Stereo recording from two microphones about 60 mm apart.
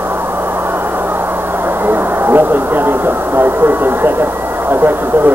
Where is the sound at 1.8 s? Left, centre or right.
Right.